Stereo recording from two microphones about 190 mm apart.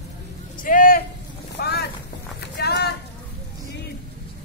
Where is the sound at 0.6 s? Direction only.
45° left (ahead or behind).